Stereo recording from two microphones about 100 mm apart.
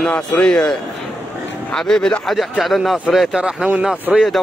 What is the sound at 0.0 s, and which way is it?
Speech, 10° left (ahead or behind).